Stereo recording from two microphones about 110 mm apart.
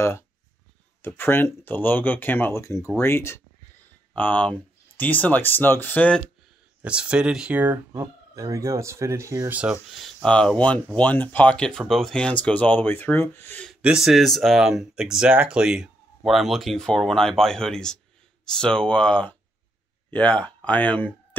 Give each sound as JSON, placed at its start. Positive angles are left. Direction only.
{"t": 1.0, "sound": "speech", "side_deg": 20}
{"t": 4.1, "sound": "speech", "side_deg": 15}
{"t": 6.8, "sound": "speech", "side_deg": -10}
{"t": 8.0, "sound": "speech", "side_deg": -30}
{"t": 9.5, "sound": "speech", "side_deg": -10}
{"t": 9.8, "sound": "speech", "side_deg": 0}
{"t": 13.8, "sound": "speech", "side_deg": -5}
{"t": 20.3, "sound": "speech", "side_deg": 15}